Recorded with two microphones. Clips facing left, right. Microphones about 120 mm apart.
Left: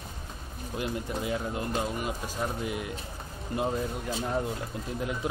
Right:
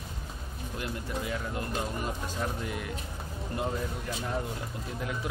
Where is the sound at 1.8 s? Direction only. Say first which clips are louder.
Left 2 dB; 10° left (ahead or behind).